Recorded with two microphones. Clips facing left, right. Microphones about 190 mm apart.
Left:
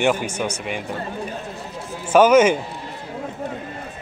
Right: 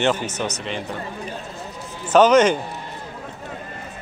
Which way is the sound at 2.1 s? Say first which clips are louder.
Left 1 dB; 10° left (ahead or behind).